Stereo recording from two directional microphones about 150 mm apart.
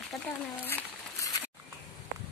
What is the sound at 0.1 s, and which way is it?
Speech, centre (ahead or behind).